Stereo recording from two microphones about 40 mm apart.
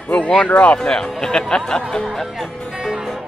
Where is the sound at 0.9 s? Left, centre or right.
Centre.